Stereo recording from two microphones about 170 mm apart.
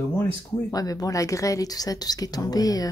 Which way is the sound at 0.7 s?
20° left (ahead or behind).